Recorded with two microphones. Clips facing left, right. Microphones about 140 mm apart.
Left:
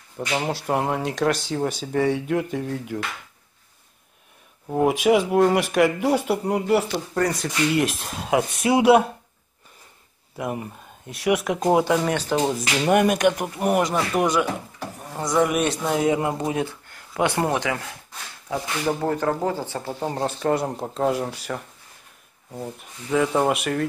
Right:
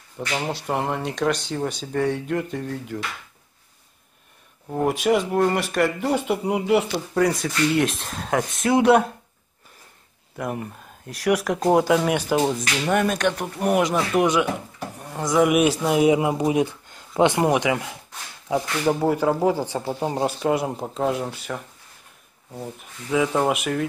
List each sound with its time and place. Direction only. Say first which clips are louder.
0.3 s speech: left 2 dB; 10° left (ahead or behind)
4.6 s speech: left 2 dB; 10° left (ahead or behind)
10.3 s speech: even; 5° left (ahead or behind); by 12.4 s 10° right (ahead or behind)
12.6 s speech: left 3 dB; 15° left (ahead or behind); by 21.6 s centre (ahead or behind)
22.8 s speech: even; centre (ahead or behind)